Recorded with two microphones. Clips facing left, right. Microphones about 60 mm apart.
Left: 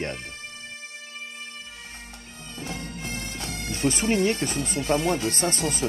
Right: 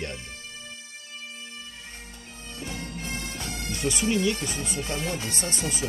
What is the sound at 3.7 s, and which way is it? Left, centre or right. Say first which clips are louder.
Speech: left 3 dB; left.